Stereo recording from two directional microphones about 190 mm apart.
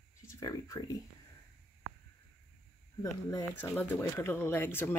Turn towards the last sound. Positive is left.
turn(degrees=10)  # may be behind; listen again after turning